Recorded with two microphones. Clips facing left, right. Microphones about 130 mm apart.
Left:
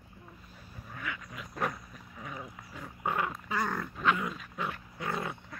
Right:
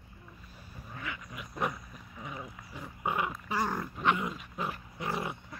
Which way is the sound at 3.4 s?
25° right (ahead or behind).